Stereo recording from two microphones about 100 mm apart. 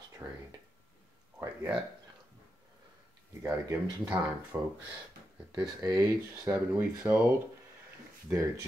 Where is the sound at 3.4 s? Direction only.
30° right (ahead or behind).